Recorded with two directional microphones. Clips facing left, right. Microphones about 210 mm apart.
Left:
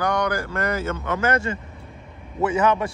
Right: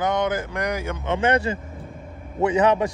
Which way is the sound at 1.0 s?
30° right (ahead or behind).